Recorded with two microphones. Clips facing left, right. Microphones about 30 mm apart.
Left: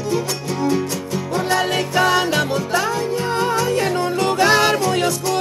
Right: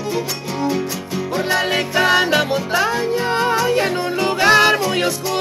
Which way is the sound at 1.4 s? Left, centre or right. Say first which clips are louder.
Right 1 dB; centre.